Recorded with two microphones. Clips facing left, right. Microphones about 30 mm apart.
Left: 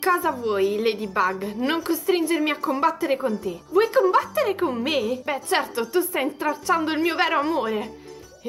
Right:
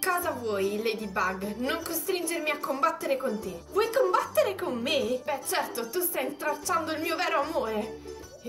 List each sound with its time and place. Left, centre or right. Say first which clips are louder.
0.0 s a woman's voice: left 7 dB; left
5.2 s a woman's voice: left 6 dB; left